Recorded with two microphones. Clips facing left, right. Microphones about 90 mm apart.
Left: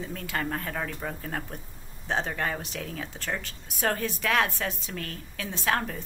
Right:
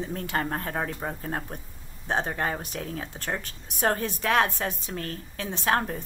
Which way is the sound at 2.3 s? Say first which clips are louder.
Right 2 dB; 30° right (ahead or behind).